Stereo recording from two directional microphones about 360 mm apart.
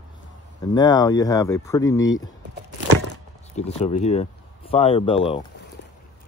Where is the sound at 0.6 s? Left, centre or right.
Centre.